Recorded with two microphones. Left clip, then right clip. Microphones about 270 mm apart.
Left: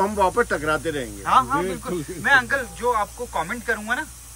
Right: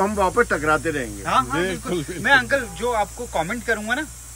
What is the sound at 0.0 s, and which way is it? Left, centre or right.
Speech, centre.